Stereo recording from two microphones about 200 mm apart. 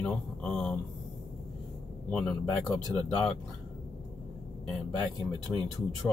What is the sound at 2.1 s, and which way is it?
Speech, centre (ahead or behind).